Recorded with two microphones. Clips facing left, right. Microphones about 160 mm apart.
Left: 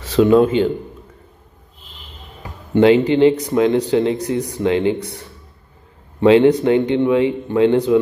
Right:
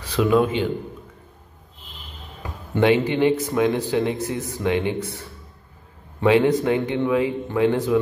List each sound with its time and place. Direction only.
0.2 s speech: 30° left (ahead or behind)
2.7 s speech: 25° left (ahead or behind)
6.2 s speech: 25° left (ahead or behind)